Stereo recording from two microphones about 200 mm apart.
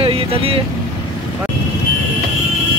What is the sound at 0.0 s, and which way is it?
Vehicle, 30° right (ahead or behind).